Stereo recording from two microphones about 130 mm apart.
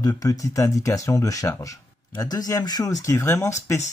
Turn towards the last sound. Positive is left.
turn(degrees=20)  # may be behind; listen again after turning